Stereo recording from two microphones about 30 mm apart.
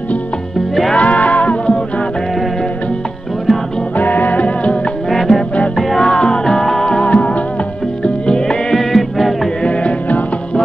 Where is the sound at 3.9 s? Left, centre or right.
Left.